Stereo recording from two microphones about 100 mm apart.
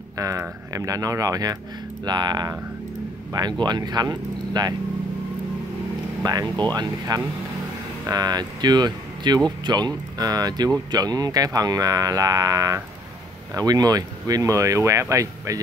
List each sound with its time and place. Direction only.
0.2 s speech: 35° right (ahead or behind)
6.2 s speech: 40° right (ahead or behind)